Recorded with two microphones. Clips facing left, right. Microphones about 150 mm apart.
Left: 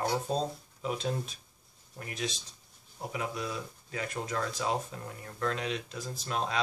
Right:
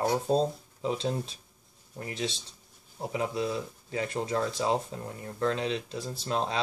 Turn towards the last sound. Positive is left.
turn(degrees=-30)  # may be behind; listen again after turning